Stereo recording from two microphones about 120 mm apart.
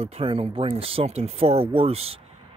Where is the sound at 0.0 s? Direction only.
55° right (ahead or behind).